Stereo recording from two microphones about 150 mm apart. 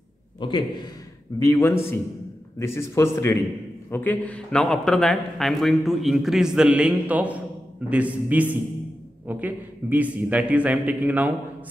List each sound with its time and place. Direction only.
0.4 s a man's voice: 30° left (ahead or behind)
1.4 s a man's voice: 15° left (ahead or behind); by 11.3 s 10° right (ahead or behind)